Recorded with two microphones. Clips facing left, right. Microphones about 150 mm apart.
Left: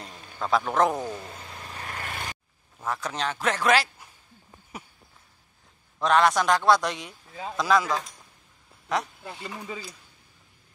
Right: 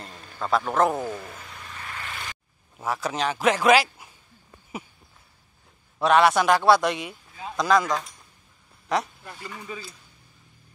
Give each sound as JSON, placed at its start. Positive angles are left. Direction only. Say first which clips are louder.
{"t": 0.0, "sound": "speech", "louder": "even", "side_deg": 0}
{"t": 1.1, "sound": "vehicle", "louder": "right 1 dB", "side_deg": 30}
{"t": 2.8, "sound": "a man's voice", "louder": "right 3 dB", "side_deg": -10}
{"t": 5.9, "sound": "a man's voice", "louder": "right 3 dB", "side_deg": -5}
{"t": 9.2, "sound": "speech", "louder": "left 2 dB", "side_deg": 20}